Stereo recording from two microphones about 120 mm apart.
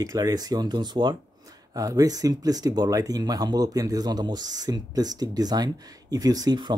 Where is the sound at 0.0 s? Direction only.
30° right (ahead or behind).